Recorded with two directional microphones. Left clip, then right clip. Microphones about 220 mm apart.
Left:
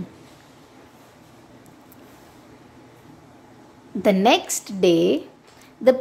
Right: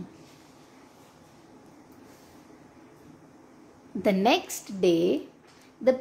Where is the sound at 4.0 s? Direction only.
10° left (ahead or behind).